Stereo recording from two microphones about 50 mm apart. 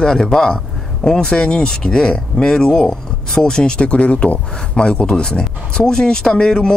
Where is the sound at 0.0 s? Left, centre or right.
Centre.